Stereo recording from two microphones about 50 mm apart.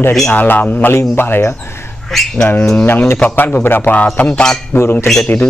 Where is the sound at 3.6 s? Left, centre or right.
Left.